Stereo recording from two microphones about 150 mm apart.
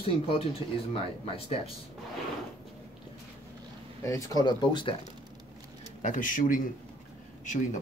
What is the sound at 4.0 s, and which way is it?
Speech, 20° left (ahead or behind).